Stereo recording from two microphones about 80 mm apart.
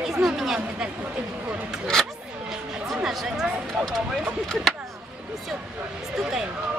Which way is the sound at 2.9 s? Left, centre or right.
Centre.